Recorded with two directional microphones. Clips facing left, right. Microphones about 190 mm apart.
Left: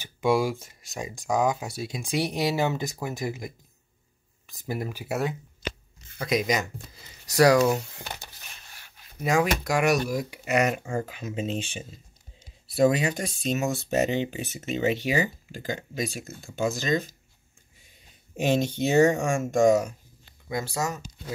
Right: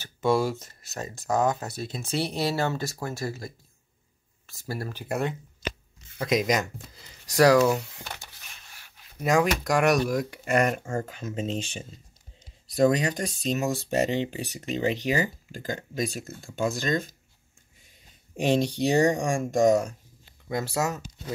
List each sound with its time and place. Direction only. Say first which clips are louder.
0.0 s speech: even; 15° left (ahead or behind)
9.2 s speech: right 1 dB; centre (ahead or behind)
10.4 s speech: even; 50° right (ahead or behind)
11.4 s speech: even; 35° right (ahead or behind)
16.6 s speech: even; centre (ahead or behind)
18.4 s speech: right 1 dB; 30° right (ahead or behind)
20.4 s speech: right 2 dB; 5° right (ahead or behind)